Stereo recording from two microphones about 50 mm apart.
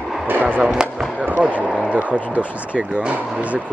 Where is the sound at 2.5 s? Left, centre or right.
Right.